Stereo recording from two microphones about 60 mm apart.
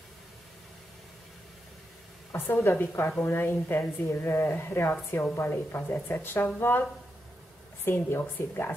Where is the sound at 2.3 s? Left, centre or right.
Left.